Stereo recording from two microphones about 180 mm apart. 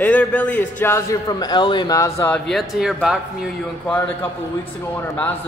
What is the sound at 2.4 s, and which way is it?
Speech, centre (ahead or behind).